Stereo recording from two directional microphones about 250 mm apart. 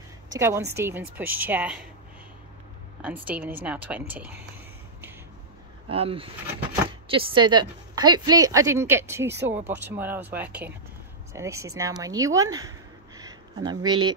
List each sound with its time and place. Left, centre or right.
0.4 s a woman's voice: centre
3.0 s speech: centre
5.9 s a woman's voice: right